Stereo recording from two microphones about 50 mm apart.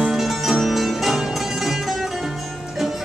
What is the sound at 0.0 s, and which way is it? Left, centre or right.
Music, centre.